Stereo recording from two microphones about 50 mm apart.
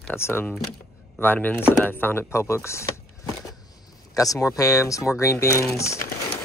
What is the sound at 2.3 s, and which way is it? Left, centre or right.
Speech, left.